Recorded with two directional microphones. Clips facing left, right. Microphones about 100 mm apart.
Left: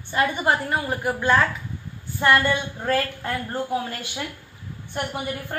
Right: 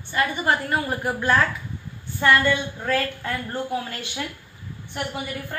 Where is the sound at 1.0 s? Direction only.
Centre (ahead or behind).